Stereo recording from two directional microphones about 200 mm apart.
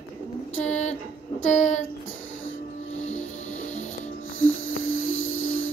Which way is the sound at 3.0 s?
35° left (ahead or behind).